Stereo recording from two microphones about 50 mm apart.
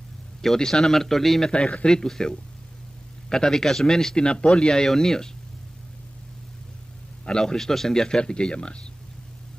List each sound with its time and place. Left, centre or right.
0.4 s speech: centre
1.5 s speech: left
1.9 s speech: centre
7.2 s speech: centre